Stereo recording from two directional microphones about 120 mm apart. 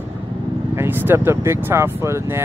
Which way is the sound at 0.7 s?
20° right (ahead or behind).